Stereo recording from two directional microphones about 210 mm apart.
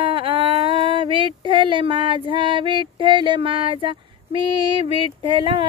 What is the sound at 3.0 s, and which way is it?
Female singing, 25° right (ahead or behind).